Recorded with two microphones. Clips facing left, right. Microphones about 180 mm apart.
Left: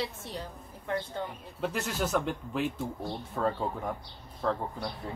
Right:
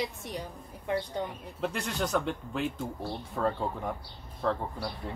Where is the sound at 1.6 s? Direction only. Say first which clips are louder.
Even; 5° left (ahead or behind).